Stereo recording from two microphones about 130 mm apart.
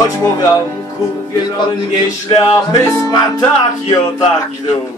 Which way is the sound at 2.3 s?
30° left (ahead or behind).